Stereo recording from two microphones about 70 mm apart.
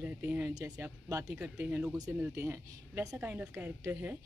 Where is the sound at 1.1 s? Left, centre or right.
Right.